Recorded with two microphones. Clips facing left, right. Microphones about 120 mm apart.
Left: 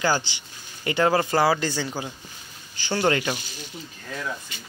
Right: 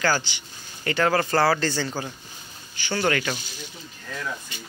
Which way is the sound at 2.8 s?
25° left (ahead or behind).